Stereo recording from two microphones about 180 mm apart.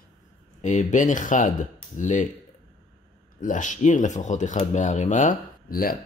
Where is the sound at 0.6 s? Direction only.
45° left (ahead or behind).